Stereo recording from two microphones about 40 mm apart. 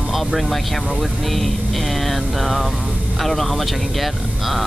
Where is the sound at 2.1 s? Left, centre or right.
Centre.